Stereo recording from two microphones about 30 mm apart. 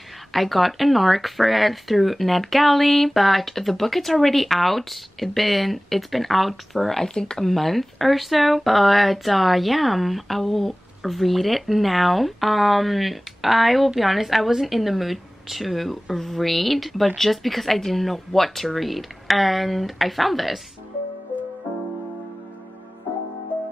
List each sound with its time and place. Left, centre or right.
0.3 s a woman's voice: centre
7.0 s speech: left
7.3 s a woman's voice: centre
23.5 s music: right